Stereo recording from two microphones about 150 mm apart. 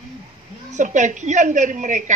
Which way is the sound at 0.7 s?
55° right (ahead or behind).